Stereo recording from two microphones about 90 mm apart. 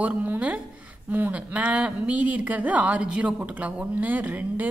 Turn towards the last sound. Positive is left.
turn(degrees=-20)  # may be behind; listen again after turning